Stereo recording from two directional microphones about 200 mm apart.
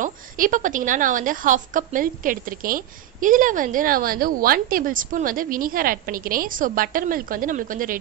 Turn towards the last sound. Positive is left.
turn(degrees=-45)  # may be behind; listen again after turning